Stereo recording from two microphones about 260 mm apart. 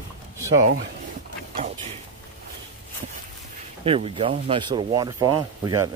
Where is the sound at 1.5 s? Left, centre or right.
Right.